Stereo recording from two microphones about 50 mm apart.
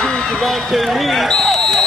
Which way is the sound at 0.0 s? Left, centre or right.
Centre.